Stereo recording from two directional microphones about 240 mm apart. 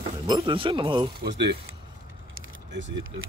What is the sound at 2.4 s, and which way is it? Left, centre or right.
Keys jangling, right.